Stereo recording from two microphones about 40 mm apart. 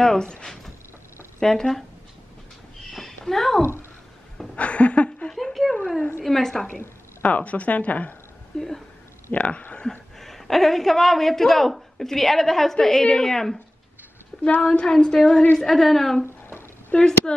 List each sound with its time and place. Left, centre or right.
0.0 s a woman's voice: centre
2.9 s a sound: centre
4.6 s a sound: left
5.3 s a sound: centre
6.2 s a woman's voice: centre
7.2 s a woman's voice: left
8.5 s a woman's voice: centre
9.3 s a woman's voice: left
9.8 s a man's voice: centre
14.4 s a woman's voice: left
14.8 s a sound: centre
15.6 s a woman's voice: centre
16.9 s a woman's voice: left